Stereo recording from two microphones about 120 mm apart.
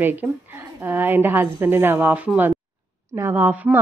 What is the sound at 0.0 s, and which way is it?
A woman's voice, 15° right (ahead or behind).